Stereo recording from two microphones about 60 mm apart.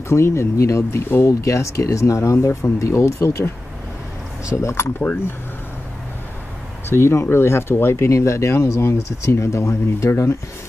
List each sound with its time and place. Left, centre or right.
0.1 s speech: left
3.3 s speech: left
4.9 s speech: left
6.9 s speech: left